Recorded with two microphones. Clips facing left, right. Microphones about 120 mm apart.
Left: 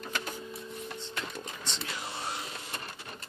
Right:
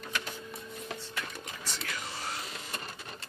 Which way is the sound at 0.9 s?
25° left (ahead or behind).